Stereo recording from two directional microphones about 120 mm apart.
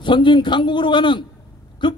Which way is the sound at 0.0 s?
40° left (ahead or behind).